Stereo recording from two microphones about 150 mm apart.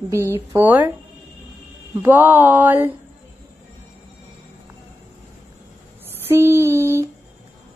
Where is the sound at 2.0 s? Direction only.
10° right (ahead or behind).